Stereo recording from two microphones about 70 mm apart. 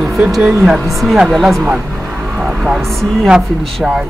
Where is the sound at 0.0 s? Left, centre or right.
Centre.